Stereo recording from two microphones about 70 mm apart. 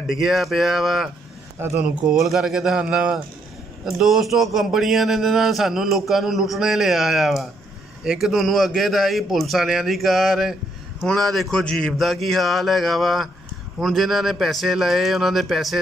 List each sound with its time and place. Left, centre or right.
0.1 s a man's voice: centre
1.8 s speech: right
2.1 s a man's voice: centre
11.6 s a man's voice: centre
12.0 s a man's voice: centre